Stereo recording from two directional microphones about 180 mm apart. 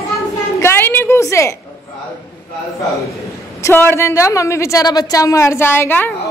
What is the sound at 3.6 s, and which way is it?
Speech, 10° left (ahead or behind).